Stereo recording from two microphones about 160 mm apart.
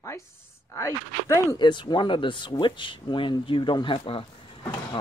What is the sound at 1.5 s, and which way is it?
A man's voice, 30° left (ahead or behind).